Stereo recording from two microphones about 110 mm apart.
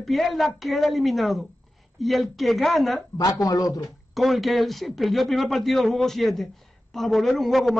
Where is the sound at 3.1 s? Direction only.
35° left (ahead or behind).